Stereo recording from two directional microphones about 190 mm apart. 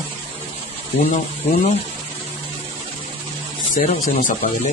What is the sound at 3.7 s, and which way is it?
Speech, 45° left (ahead or behind).